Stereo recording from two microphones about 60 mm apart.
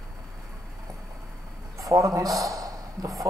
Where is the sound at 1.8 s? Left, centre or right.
Right.